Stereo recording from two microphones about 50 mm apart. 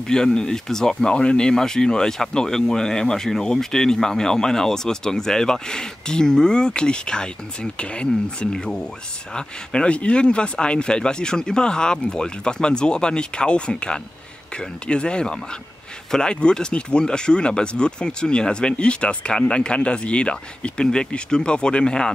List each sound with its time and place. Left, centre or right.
0.0 s speech: centre